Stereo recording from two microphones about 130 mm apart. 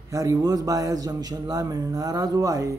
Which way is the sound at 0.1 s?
25° right (ahead or behind).